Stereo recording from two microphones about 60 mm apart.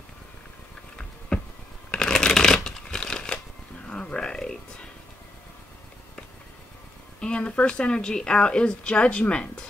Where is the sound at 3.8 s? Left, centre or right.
Centre.